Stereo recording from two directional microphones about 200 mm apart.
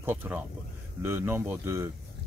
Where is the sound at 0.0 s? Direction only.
10° right (ahead or behind).